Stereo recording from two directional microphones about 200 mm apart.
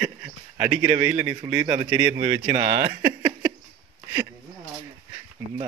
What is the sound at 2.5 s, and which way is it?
Speech, 35° right (ahead or behind).